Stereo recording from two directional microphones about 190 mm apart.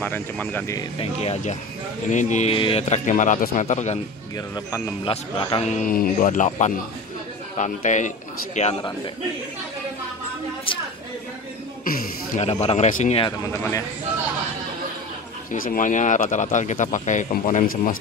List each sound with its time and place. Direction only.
0.0 s speech: 10° left (ahead or behind)
0.9 s speech: 35° left (ahead or behind)
4.6 s speech: 20° left (ahead or behind)
5.0 s speech: 30° left (ahead or behind)
11.8 s a sound: 45° left (ahead or behind)
12.4 s speech: 35° left (ahead or behind)
13.5 s speech: 15° left (ahead or behind)
15.5 s speech: 50° left (ahead or behind)